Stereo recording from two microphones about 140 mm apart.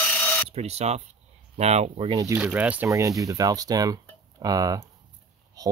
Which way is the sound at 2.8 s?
25° right (ahead or behind).